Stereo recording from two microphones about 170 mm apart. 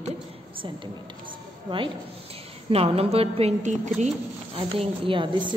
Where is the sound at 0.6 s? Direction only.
30° right (ahead or behind).